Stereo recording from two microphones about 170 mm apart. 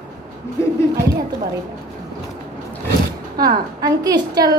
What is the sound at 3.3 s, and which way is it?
Speech, 20° right (ahead or behind).